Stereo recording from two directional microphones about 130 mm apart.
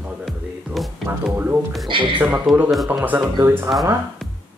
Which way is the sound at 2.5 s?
Centre (ahead or behind).